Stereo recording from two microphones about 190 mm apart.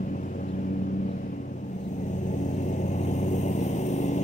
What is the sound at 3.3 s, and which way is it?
Vehicle, 40° left (ahead or behind).